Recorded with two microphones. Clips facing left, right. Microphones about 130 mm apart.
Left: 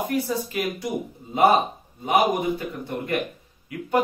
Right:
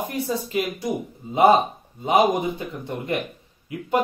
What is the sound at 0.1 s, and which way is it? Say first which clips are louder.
Speech: even; 20° right (ahead or behind).